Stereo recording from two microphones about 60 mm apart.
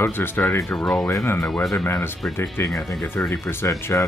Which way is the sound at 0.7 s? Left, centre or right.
Centre.